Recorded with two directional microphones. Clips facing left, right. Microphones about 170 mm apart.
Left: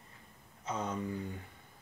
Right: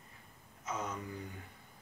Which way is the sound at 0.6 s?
30° left (ahead or behind).